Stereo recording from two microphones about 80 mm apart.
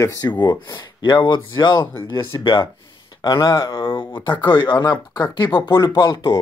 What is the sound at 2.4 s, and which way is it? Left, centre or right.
Speech, left.